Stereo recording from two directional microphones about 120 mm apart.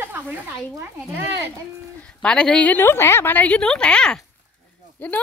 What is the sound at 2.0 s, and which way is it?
A woman's voice, 5° left (ahead or behind).